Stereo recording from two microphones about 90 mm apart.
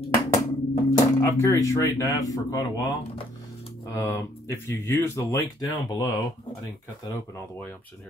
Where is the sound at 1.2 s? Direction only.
35° left (ahead or behind).